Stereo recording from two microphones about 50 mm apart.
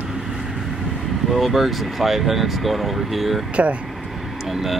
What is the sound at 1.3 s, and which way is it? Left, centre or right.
Speech, centre.